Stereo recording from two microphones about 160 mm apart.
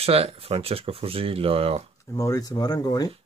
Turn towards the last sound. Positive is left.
turn(degrees=25)  # may be behind; listen again after turning